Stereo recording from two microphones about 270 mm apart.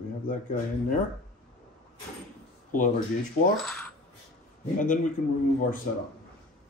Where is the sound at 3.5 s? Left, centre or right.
Centre.